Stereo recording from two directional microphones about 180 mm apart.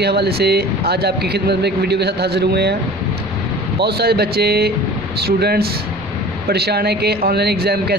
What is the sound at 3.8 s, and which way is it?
Speech, 60° right (ahead or behind).